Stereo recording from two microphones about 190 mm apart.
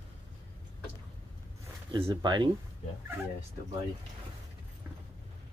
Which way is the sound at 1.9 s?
25° right (ahead or behind).